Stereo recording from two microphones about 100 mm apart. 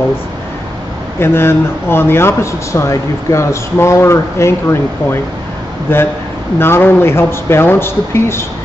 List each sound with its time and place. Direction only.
1.2 s speech: 25° left (ahead or behind)